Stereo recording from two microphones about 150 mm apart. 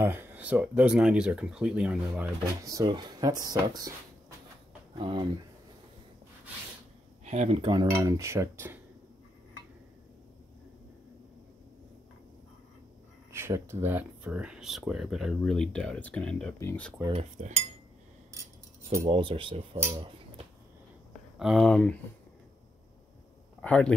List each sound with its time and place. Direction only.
0.0 s speech: 15° right (ahead or behind)
2.6 s speech: 25° right (ahead or behind)
4.9 s speech: 30° right (ahead or behind)
7.2 s speech: 45° right (ahead or behind)
7.9 s speech: 20° right (ahead or behind)
13.3 s speech: 15° right (ahead or behind); by 16.5 s 5° left (ahead or behind)
16.5 s speech: 15° left (ahead or behind)
17.1 s cutlery: 45° right (ahead or behind)
19.0 s speech: 35° right (ahead or behind)
21.4 s speech: centre (ahead or behind)
23.6 s speech: 10° left (ahead or behind)